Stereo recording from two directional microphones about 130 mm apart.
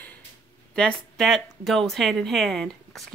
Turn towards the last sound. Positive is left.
turn(degrees=5)  # may be behind; listen again after turning